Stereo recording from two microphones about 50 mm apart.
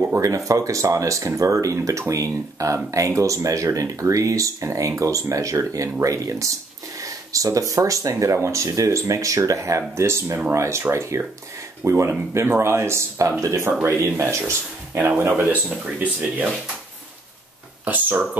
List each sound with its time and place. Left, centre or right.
0.3 s speech: right
10.5 s speech: right
13.4 s speech: right
15.1 s speech: right
15.7 s speech: right
17.8 s speech: right